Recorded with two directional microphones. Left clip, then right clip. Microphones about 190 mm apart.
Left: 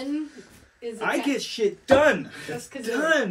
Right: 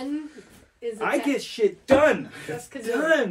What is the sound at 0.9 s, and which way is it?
Speech, centre (ahead or behind).